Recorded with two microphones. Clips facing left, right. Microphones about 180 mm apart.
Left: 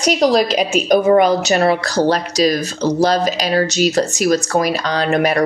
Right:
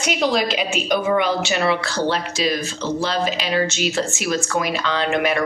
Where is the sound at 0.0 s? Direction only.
40° left (ahead or behind).